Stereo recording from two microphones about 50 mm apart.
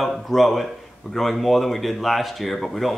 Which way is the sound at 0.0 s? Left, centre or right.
Centre.